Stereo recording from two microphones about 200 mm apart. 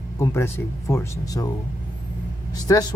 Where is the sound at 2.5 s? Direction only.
20° left (ahead or behind).